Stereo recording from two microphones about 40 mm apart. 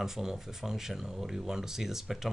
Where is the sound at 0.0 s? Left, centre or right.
Centre.